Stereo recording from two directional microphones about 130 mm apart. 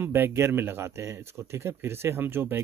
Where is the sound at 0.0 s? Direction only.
15° right (ahead or behind).